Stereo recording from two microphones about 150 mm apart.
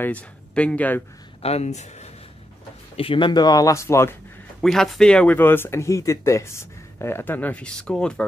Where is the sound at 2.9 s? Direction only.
35° left (ahead or behind); by 4.1 s 20° left (ahead or behind).